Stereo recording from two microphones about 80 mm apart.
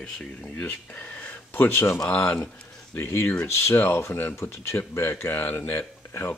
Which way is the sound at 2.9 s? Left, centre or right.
Left.